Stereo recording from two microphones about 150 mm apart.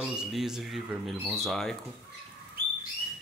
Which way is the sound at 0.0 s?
5° right (ahead or behind).